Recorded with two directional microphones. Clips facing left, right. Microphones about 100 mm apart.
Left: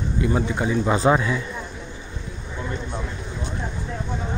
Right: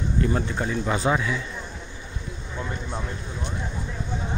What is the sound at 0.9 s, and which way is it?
Speech, 35° left (ahead or behind).